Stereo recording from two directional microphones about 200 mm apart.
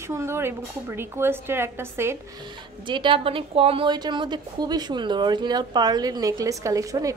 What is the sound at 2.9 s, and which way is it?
A woman's voice, 25° right (ahead or behind).